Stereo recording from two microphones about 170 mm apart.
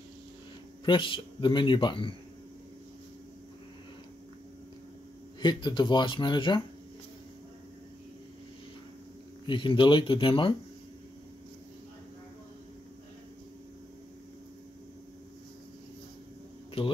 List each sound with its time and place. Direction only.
0.8 s speech: 30° left (ahead or behind)
5.4 s speech: 25° left (ahead or behind)
9.5 s speech: 30° left (ahead or behind)
16.8 s speech: 35° left (ahead or behind)